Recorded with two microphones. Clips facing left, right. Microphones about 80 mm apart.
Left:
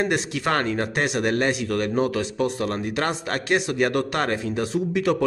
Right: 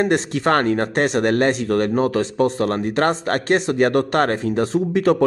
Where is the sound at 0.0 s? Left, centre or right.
Right.